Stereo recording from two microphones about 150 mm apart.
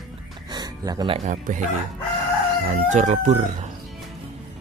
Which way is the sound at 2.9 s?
55° right (ahead or behind).